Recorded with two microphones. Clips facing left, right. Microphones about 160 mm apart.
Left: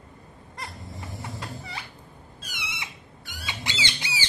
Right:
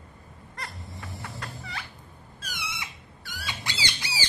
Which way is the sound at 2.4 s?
20° left (ahead or behind).